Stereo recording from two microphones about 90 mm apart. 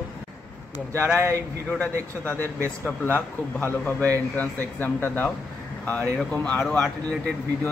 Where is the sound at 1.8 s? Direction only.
20° left (ahead or behind).